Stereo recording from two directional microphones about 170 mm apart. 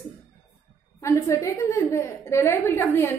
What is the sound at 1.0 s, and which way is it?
A woman's voice, 20° left (ahead or behind).